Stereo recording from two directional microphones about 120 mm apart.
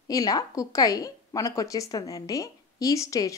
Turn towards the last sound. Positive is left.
turn(degrees=25)  # may be behind; listen again after turning